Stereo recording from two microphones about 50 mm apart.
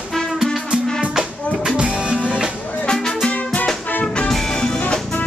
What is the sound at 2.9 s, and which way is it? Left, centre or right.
Music, centre.